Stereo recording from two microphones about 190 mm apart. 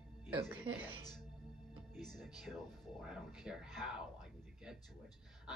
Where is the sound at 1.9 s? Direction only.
Centre (ahead or behind).